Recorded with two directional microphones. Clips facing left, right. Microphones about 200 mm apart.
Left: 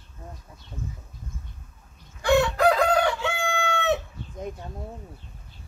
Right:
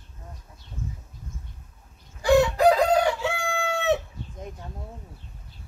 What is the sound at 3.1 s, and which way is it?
Crowing, 35° right (ahead or behind).